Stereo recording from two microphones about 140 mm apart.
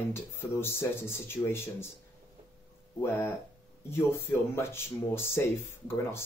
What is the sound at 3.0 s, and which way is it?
Speech, 15° left (ahead or behind).